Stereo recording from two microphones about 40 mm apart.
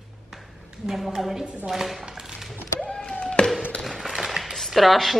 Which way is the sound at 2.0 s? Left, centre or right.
Centre.